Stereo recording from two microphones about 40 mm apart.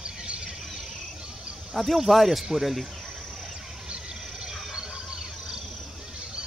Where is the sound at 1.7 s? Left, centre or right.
Centre.